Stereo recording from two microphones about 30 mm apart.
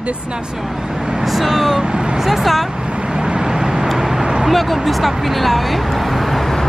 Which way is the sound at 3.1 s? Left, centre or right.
Right.